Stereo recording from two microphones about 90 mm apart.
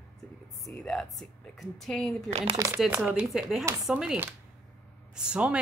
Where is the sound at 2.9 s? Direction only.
20° right (ahead or behind).